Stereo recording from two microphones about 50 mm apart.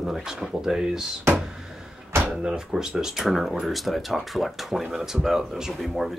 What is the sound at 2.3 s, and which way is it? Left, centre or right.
Speech, centre.